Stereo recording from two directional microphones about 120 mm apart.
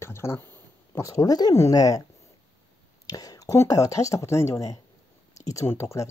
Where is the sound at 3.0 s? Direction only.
30° left (ahead or behind).